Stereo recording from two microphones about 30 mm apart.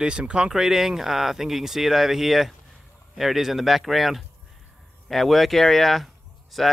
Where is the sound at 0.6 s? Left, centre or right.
Centre.